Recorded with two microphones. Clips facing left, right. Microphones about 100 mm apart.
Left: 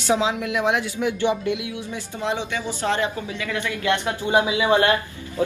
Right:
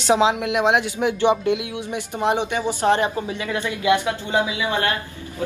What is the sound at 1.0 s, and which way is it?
Speech, 20° right (ahead or behind).